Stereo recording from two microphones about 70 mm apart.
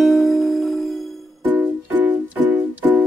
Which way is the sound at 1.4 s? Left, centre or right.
Right.